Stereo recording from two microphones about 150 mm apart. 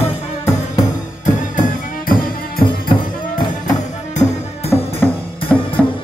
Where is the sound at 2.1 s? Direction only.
80° left.